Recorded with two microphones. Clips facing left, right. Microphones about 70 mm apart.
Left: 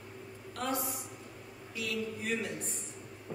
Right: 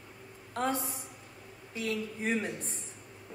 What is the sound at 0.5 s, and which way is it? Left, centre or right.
A man's voice, right.